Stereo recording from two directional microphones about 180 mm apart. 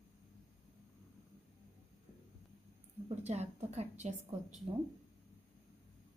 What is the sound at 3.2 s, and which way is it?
Speech, 35° right (ahead or behind).